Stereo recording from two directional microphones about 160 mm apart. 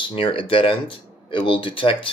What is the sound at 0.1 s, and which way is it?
Speech, 35° left (ahead or behind).